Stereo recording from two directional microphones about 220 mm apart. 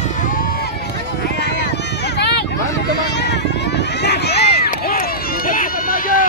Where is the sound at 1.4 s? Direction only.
50° left (ahead or behind).